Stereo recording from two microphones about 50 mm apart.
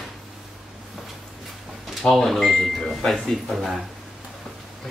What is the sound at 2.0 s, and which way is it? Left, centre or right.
Speech, centre.